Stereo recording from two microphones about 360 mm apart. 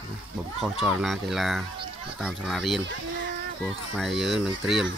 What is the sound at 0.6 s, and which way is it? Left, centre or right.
Speech, centre.